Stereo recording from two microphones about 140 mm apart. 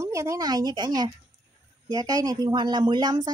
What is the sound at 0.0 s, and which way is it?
Speech, 20° right (ahead or behind).